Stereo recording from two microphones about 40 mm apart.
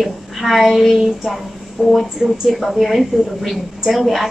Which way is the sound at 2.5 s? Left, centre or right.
Centre.